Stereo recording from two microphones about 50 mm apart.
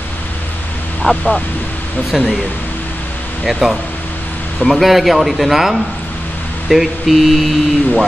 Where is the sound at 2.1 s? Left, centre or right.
Centre.